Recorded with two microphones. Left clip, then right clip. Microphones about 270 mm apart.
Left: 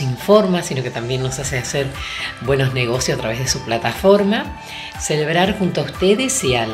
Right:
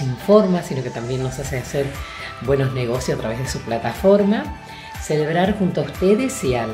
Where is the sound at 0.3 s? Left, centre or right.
Centre.